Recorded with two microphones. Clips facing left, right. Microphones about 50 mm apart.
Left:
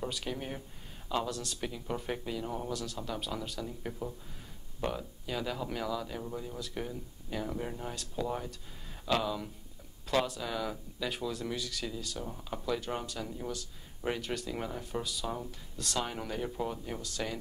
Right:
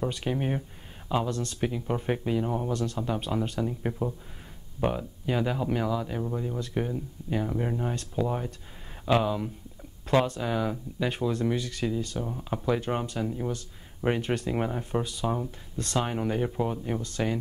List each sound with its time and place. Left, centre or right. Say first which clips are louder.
0.0 s speech: right 8 dB; right